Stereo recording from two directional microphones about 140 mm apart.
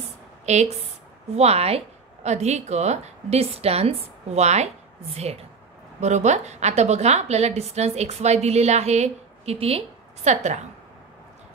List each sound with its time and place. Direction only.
0.5 s a woman's voice: 55° right (ahead or behind)